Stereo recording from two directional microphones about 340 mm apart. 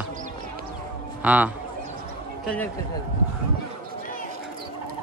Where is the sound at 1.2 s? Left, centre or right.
Centre.